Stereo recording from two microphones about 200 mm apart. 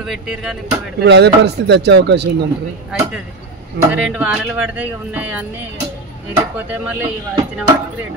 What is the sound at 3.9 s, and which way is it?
Speech, 5° right (ahead or behind).